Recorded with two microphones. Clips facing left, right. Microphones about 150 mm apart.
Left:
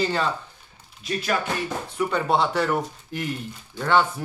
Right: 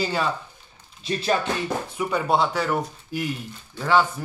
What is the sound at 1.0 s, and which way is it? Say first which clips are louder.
Speech: right 2 dB; 30° right (ahead or behind).